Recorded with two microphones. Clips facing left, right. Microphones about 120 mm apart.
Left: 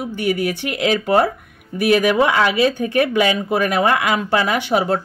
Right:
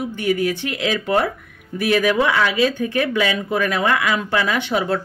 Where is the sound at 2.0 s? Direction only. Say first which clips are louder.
Right 1 dB; 15° left (ahead or behind).